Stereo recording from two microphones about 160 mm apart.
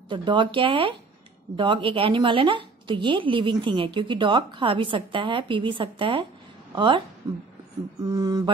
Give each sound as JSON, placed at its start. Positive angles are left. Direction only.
{"t": 0.1, "sound": "a woman's voice", "side_deg": -30}
{"t": 8.0, "sound": "mantra", "side_deg": -20}